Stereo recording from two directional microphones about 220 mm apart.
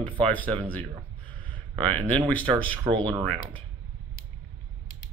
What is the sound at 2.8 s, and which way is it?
Speech, 20° right (ahead or behind).